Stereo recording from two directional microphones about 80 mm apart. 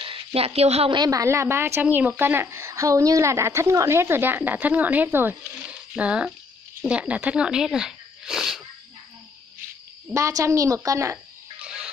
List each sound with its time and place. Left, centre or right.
0.8 s a woman's voice: right
1.1 s a woman's voice: right
5.7 s a sound: centre
6.9 s speech: centre
10.1 s a woman's voice: right
11.6 s fowl: centre